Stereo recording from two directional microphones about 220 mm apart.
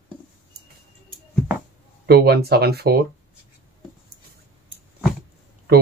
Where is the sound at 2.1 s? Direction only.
45° right (ahead or behind).